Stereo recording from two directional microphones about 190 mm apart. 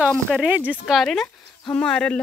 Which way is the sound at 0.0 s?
Centre (ahead or behind).